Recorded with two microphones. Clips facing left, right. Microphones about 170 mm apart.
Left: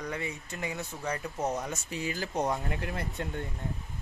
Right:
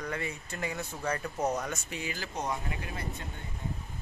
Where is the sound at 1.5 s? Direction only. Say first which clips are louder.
Even; 30° left (ahead or behind); by 3.0 s 55° left (ahead or behind).